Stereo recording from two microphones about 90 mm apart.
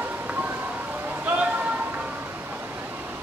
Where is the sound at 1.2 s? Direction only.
15° right (ahead or behind).